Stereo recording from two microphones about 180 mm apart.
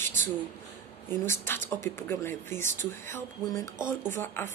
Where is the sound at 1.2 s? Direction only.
15° left (ahead or behind).